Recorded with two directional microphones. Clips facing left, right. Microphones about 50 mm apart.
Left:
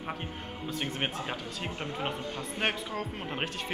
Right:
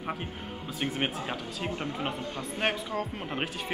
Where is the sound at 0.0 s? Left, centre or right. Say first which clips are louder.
Right 2 dB; centre.